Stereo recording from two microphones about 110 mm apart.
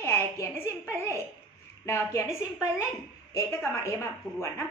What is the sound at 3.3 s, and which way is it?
Speech, 25° left (ahead or behind).